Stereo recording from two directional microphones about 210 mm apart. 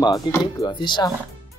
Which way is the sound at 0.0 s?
20° left (ahead or behind).